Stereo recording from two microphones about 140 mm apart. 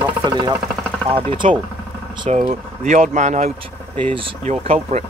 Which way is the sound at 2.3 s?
50° right (ahead or behind).